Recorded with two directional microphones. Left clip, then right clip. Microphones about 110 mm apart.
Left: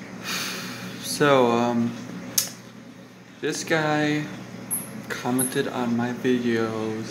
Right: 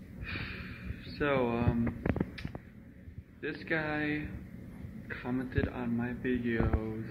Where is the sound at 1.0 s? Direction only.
35° left (ahead or behind).